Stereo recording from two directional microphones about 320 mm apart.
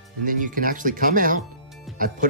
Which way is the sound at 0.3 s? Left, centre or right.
Right.